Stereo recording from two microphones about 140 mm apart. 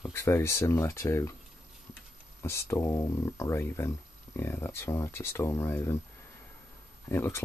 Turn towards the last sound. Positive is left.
turn(degrees=20)  # may be behind; listen again after turning